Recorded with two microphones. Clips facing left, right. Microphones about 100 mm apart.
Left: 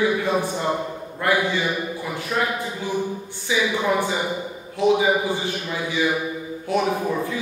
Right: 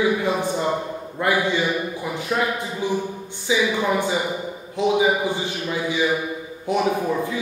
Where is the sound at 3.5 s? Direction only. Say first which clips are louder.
Right 2 dB; 20° right (ahead or behind).